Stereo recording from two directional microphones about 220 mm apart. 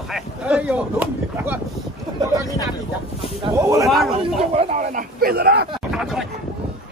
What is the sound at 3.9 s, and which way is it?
Speech, centre (ahead or behind).